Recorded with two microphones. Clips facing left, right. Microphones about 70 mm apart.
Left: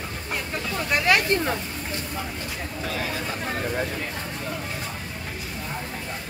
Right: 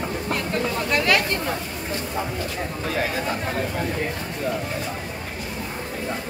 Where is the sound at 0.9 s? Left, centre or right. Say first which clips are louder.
Even; left.